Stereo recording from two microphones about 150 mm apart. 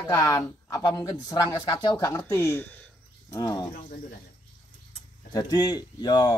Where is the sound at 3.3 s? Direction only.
25° left (ahead or behind).